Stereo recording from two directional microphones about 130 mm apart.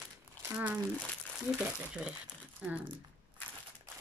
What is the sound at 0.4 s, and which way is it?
Speech, 15° right (ahead or behind).